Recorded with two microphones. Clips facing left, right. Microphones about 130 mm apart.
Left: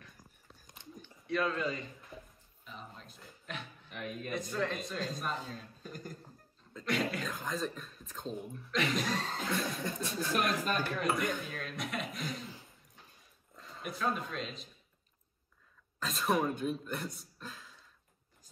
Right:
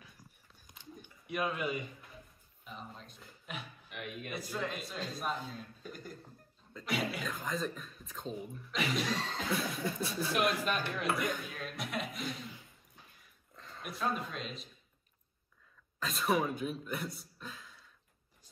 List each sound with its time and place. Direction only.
0.7 s a sound: 15° right (ahead or behind)
2.6 s a sound: centre (ahead or behind)
3.9 s speech: 35° left (ahead or behind)
4.3 s speech: 5° right (ahead or behind)
5.9 s music: 40° left (ahead or behind)
6.7 s speech: 5° right (ahead or behind)
9.1 s a sound: 45° left (ahead or behind)
9.5 s speech: 5° right (ahead or behind)
10.6 s speech: 40° left (ahead or behind)
11.1 s speech: centre (ahead or behind)
13.6 s a man's voice: centre (ahead or behind)
16.0 s speech: centre (ahead or behind)